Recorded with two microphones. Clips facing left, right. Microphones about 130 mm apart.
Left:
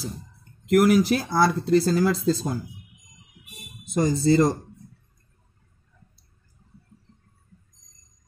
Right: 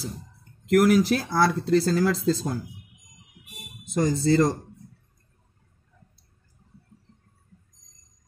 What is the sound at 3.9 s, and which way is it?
Speech, 10° left (ahead or behind).